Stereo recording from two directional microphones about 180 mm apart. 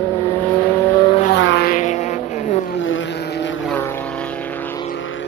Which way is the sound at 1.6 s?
45° left (ahead or behind).